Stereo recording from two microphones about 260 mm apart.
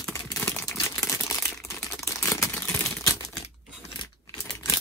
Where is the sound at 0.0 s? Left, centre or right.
Centre.